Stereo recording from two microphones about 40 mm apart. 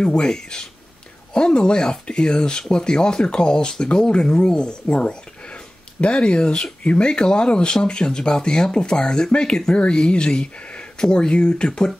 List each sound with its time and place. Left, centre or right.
0.0 s speech: left
11.0 s speech: centre